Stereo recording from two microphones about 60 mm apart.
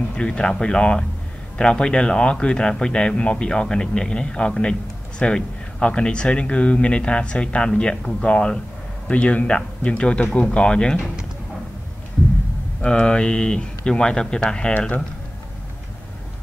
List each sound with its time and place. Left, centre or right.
0.1 s speech: centre
12.8 s speech: centre